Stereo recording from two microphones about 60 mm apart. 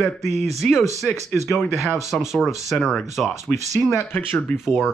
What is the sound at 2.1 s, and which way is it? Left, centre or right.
Speech, centre.